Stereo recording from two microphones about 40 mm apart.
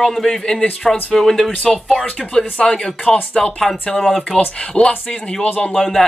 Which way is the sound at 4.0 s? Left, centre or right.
Centre.